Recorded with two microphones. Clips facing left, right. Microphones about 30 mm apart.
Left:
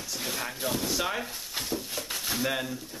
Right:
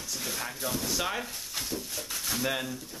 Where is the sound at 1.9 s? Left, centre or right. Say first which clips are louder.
Left 2 dB; left.